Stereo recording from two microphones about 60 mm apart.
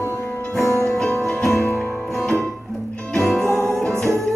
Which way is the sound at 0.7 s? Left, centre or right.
Left.